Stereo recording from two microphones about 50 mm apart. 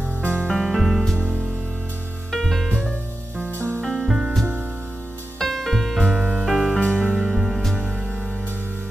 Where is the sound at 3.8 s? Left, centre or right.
Centre.